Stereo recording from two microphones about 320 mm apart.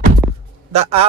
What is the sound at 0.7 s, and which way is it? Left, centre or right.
Speech, centre.